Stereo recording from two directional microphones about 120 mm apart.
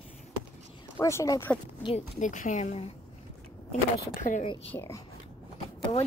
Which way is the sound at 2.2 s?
90° left.